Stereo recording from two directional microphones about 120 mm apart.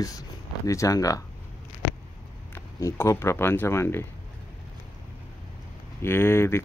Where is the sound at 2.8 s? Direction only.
25° left (ahead or behind).